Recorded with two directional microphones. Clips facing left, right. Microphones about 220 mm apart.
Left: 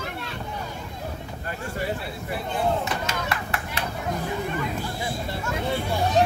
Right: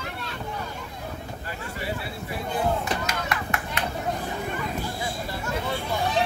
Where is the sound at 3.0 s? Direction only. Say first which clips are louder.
Even; 30° left (ahead or behind).